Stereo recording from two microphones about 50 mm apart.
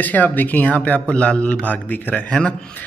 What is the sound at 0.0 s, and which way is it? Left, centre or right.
A man's voice, left.